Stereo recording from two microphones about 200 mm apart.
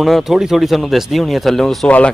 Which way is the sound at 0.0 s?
Centre (ahead or behind).